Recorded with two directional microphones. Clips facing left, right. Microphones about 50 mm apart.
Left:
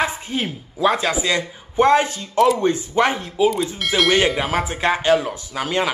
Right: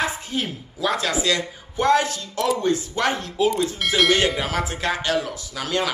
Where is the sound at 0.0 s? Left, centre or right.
Left; by 4.1 s centre.